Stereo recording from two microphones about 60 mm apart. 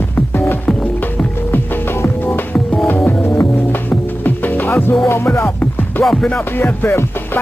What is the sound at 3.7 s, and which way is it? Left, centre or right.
Music, left.